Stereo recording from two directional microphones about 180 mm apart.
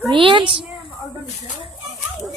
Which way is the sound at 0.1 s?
25° right (ahead or behind).